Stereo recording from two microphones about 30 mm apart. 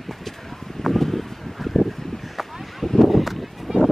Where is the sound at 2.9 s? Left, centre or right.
Centre.